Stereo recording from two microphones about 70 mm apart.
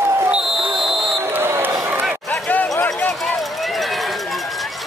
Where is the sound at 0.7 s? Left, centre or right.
Centre.